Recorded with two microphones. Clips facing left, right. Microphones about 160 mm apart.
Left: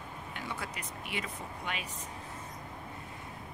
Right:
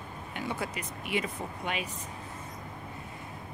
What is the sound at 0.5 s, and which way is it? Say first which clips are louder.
Speech: right 5 dB; 15° right (ahead or behind).